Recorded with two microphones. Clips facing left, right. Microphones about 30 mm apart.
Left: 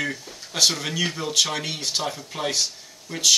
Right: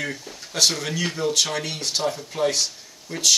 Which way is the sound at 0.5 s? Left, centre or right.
Centre.